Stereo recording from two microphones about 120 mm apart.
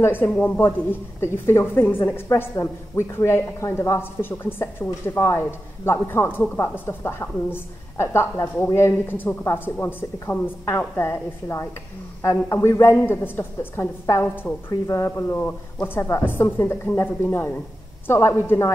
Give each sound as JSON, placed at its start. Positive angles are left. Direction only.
{"t": 0.0, "sound": "a woman's voice", "side_deg": 15}